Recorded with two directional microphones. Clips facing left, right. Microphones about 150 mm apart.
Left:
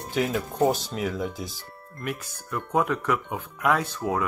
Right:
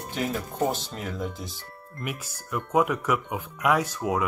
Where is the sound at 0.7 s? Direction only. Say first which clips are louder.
Left 5 dB; 5° left (ahead or behind).